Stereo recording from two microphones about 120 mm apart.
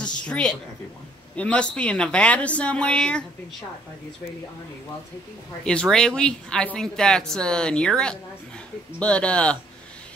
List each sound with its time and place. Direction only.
0.0 s a sound: 10° left (ahead or behind)
1.3 s speech: 10° left (ahead or behind)
5.6 s speech: 5° left (ahead or behind)